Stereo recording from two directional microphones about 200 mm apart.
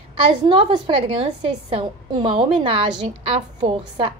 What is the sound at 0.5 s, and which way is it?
A woman's voice, 25° right (ahead or behind).